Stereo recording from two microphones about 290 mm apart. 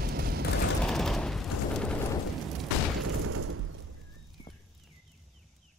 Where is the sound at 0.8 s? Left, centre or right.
Centre.